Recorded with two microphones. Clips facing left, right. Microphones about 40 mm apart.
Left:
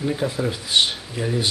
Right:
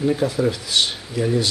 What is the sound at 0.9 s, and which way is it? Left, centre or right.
Speech, centre.